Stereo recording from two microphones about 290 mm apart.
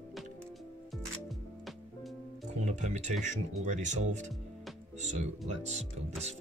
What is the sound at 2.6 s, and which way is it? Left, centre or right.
Speech, right.